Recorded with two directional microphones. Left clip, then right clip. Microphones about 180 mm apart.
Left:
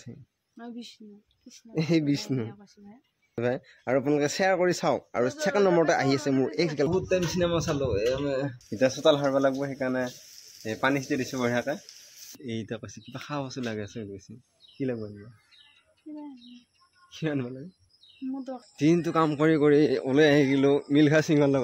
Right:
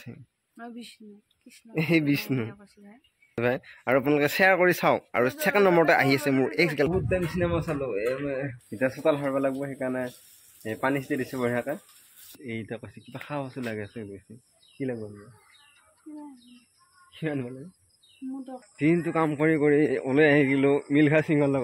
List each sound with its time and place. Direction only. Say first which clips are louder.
0.6 s speech: even; 35° left (ahead or behind)
1.7 s speech: right 2 dB; 5° right (ahead or behind)
7.1 s speech: left 1 dB; 20° left (ahead or behind)
8.6 s speech: left 3 dB; 30° left (ahead or behind)
17.1 s speech: left 1 dB; 20° left (ahead or behind)
18.8 s speech: left 1 dB; 15° left (ahead or behind)
20.0 s speech: even; 10° left (ahead or behind)